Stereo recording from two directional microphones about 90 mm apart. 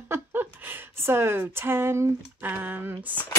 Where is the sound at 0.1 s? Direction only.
25° right (ahead or behind).